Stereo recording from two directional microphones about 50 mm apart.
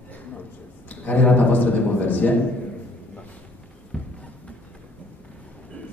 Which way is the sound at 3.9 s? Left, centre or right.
Centre.